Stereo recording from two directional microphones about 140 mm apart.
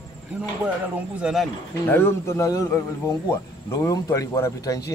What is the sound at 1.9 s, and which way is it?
A man's voice, 15° left (ahead or behind).